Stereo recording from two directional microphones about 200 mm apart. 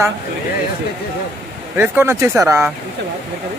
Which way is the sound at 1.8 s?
10° right (ahead or behind).